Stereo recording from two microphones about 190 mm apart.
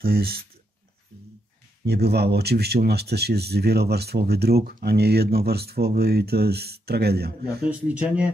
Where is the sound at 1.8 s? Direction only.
60° right (ahead or behind).